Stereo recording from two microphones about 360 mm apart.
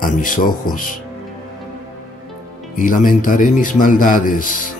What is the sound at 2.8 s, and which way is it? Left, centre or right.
Speech, left.